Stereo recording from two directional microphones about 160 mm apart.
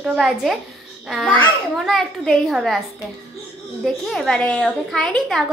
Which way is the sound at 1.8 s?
Centre (ahead or behind).